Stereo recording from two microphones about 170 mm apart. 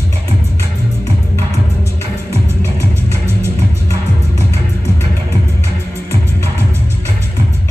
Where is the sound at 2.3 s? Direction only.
15° right (ahead or behind).